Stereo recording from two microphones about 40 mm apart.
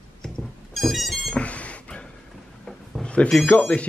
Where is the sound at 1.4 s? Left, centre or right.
Left.